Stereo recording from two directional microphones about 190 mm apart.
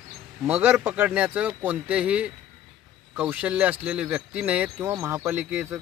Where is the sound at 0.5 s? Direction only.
10° right (ahead or behind).